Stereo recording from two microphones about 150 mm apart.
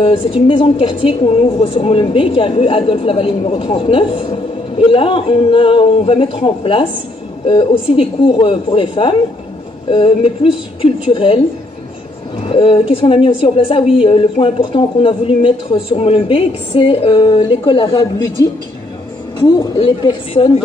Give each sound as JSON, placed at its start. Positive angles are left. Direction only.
{"t": 0.0, "sound": "a woman's voice", "side_deg": 40}
{"t": 19.8, "sound": "a woman's voice", "side_deg": 30}